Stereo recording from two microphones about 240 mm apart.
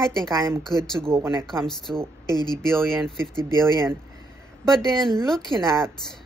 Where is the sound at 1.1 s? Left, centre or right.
Centre.